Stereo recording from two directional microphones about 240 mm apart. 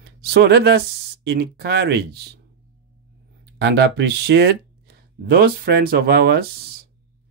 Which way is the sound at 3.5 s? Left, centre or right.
Right.